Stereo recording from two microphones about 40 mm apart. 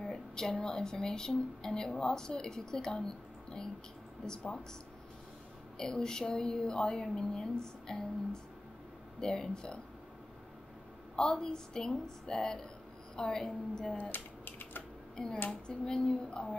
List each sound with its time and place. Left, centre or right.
0.0 s a sound: centre
0.5 s speech: centre
5.8 s speech: centre
11.1 s speech: centre
13.9 s a sound: left
15.2 s speech: centre